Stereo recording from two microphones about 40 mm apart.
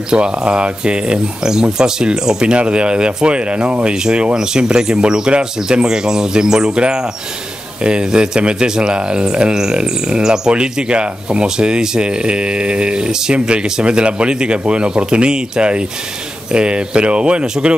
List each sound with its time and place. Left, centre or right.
0.1 s speech: right
7.8 s speech: right